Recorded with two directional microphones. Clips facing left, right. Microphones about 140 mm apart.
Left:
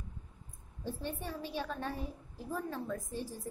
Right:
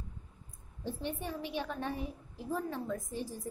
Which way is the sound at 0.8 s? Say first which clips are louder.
Right 2 dB; 15° right (ahead or behind).